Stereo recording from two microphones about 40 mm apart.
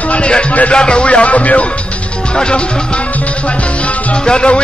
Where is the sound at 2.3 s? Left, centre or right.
Left.